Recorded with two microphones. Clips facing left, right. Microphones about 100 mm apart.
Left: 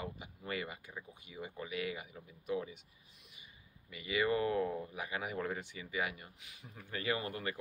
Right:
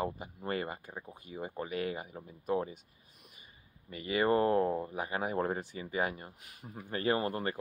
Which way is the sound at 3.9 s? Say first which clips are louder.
Right 5 dB; 40° right (ahead or behind).